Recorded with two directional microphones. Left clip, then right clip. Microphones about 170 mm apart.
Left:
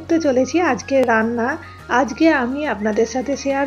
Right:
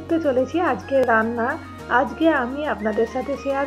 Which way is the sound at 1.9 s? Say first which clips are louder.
Left 3 dB; 30° left (ahead or behind).